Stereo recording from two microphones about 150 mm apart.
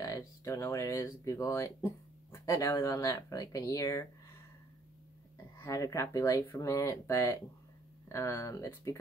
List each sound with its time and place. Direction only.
0.0 s speech: 20° left (ahead or behind)
5.6 s speech: 20° left (ahead or behind)